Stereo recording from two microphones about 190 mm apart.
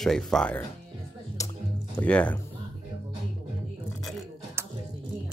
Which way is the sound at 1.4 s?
15° left (ahead or behind).